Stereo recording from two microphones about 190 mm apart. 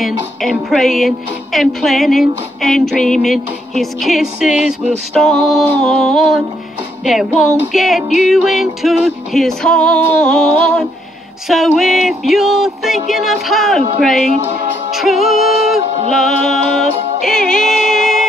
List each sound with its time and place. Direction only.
0.0 s music: centre (ahead or behind)